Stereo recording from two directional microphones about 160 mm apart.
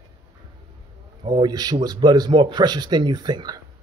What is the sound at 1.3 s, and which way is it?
Speech, 25° right (ahead or behind).